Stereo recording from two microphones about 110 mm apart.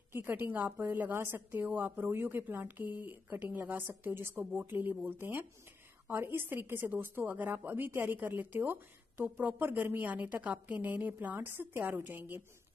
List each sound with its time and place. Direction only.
0.1 s a woman's voice: 20° right (ahead or behind)